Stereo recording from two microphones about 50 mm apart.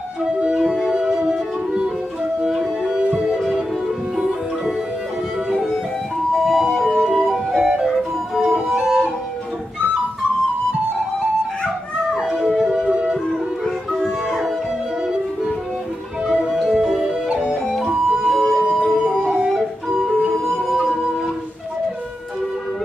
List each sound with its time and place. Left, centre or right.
0.6 s music: centre
3.3 s music: centre
6.3 s music: centre
12.2 s music: centre
16.3 s music: centre
16.6 s music: centre
18.3 s a sound: centre
18.9 s howl: centre
19.2 s howl: centre
19.5 s music: centre